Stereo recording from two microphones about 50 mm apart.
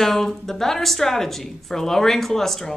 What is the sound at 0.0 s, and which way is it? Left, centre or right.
A woman's voice, centre.